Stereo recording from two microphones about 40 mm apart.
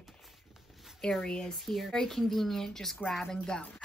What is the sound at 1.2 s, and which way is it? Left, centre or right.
Speech, left.